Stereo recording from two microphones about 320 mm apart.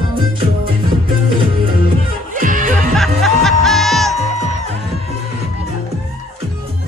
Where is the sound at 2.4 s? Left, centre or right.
Right.